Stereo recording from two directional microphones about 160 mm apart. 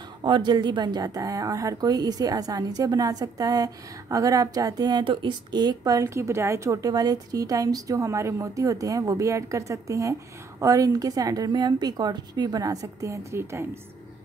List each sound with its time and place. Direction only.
0.2 s a woman's voice: 30° right (ahead or behind)